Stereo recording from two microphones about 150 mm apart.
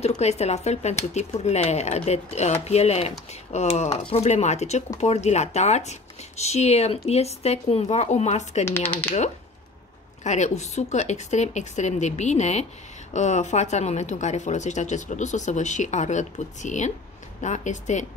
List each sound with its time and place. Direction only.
0.0 s speech: 45° left (ahead or behind)
8.6 s speech: 15° left (ahead or behind)
10.2 s speech: 50° left (ahead or behind)